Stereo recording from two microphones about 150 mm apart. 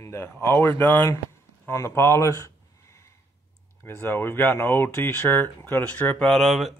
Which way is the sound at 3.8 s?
15° left (ahead or behind).